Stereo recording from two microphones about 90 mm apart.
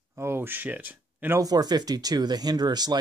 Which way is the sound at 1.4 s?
45° right (ahead or behind).